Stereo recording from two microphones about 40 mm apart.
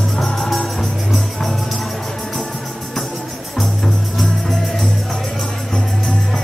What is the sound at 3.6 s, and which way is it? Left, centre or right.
Music, centre.